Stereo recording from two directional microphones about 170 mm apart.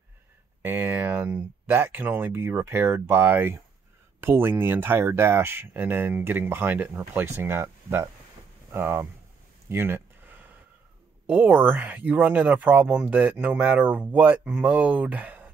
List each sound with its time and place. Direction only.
0.6 s speech: 10° right (ahead or behind)
9.7 s a sound: 15° right (ahead or behind)
11.2 s speech: 10° right (ahead or behind)